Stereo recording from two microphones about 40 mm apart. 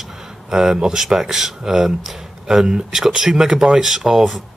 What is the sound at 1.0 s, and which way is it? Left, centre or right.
Speech, centre.